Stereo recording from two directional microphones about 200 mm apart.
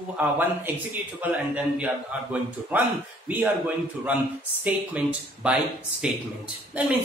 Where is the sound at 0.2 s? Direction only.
10° right (ahead or behind).